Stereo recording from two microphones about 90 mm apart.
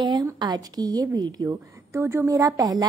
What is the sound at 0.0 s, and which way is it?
A woman's voice, 50° right (ahead or behind).